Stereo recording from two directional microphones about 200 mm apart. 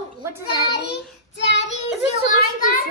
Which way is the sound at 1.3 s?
60° left (ahead or behind).